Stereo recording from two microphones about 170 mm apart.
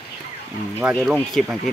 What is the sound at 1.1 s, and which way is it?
Speech, centre (ahead or behind).